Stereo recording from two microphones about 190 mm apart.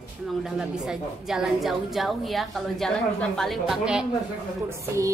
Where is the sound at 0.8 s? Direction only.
Centre (ahead or behind).